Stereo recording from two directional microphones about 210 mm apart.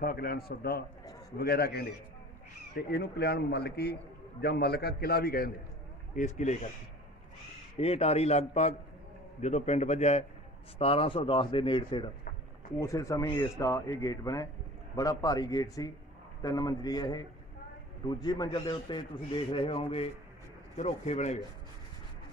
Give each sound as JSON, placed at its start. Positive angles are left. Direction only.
{"t": 0.0, "sound": "a man's voice", "side_deg": 45}
{"t": 2.9, "sound": "a man's voice", "side_deg": 50}
{"t": 6.1, "sound": "a man's voice", "side_deg": 35}
{"t": 7.7, "sound": "a man's voice", "side_deg": 30}